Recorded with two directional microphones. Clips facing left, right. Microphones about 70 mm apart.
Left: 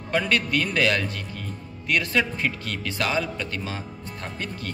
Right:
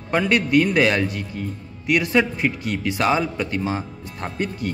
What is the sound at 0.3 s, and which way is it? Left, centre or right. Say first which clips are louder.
A man's voice: right 6 dB; right.